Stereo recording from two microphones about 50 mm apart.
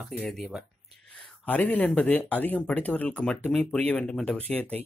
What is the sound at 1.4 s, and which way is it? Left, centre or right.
Speech, left.